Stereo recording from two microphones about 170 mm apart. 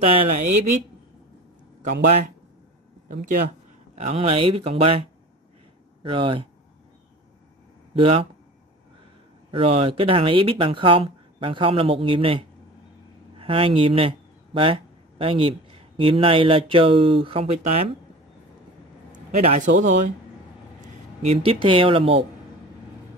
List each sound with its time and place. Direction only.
0.3 s speech: 45° right (ahead or behind)
3.9 s speech: 40° right (ahead or behind)
6.0 s speech: 30° right (ahead or behind)
8.0 s speech: 30° right (ahead or behind)
9.5 s speech: 35° right (ahead or behind)
19.1 s speech: 45° right (ahead or behind)
21.2 s speech: 35° right (ahead or behind)